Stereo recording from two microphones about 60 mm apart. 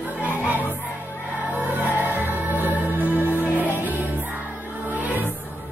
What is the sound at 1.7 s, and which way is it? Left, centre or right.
Music, right.